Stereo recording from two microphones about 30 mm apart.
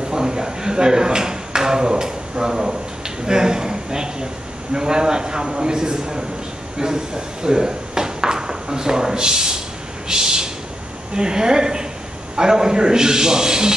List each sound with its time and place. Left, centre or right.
0.1 s a man's voice: right
7.4 s a sound: right
11.1 s a man's voice: right